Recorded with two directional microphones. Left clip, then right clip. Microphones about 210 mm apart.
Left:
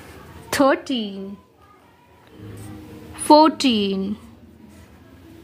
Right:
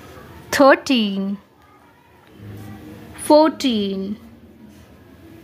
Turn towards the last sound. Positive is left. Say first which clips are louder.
# left 1 dB
turn(degrees=10)  # may be behind; listen again after turning